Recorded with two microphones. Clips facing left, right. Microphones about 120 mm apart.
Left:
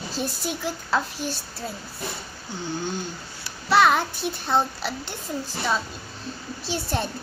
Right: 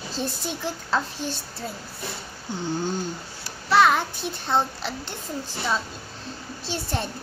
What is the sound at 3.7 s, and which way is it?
Speech, 15° left (ahead or behind).